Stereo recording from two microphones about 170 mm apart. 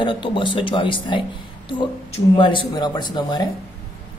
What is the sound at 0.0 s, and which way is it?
A woman's voice, 30° left (ahead or behind).